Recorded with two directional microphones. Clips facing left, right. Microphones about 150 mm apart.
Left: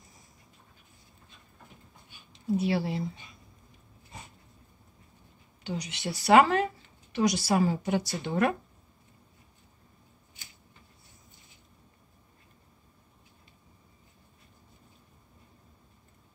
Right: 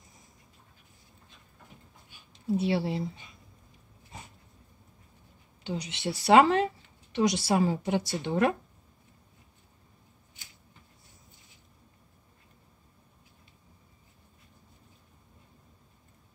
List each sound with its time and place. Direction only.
2.5 s speech: 30° right (ahead or behind)
5.6 s speech: 25° right (ahead or behind)